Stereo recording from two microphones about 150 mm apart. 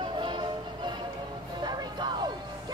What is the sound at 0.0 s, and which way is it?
Music, 30° right (ahead or behind).